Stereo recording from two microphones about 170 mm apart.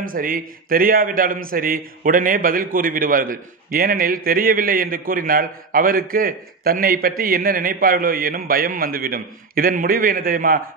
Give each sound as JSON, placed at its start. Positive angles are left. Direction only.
{"t": 0.0, "sound": "speech", "side_deg": -55}